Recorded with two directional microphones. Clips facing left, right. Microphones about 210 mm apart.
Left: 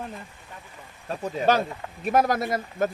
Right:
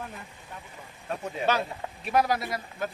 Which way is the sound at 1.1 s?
40° left (ahead or behind).